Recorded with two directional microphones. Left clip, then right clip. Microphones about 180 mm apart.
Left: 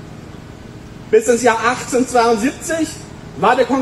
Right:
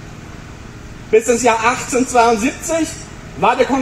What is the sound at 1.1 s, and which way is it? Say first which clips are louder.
A man's voice: even; 40° left (ahead or behind).